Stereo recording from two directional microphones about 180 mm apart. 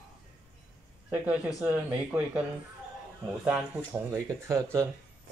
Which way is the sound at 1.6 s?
10° right (ahead or behind).